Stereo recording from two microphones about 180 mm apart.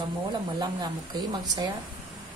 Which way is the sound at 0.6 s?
20° right (ahead or behind).